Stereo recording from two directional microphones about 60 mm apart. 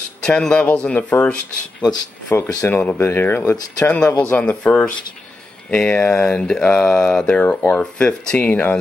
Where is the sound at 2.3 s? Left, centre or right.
Left.